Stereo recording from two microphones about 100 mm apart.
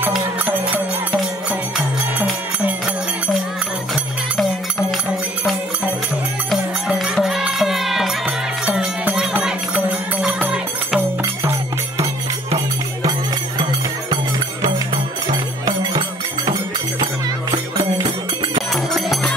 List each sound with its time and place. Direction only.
6.5 s music: centre (ahead or behind)
10.4 s music: 10° right (ahead or behind)
13.6 s music: 55° right (ahead or behind)
18.7 s music: centre (ahead or behind)